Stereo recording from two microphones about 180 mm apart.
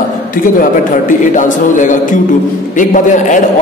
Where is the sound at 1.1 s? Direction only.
45° left (ahead or behind).